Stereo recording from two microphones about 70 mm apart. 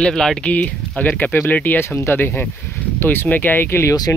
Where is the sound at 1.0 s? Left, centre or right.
Left.